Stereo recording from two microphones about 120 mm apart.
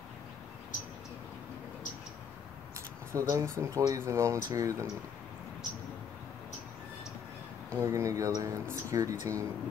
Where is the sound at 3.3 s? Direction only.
25° right (ahead or behind).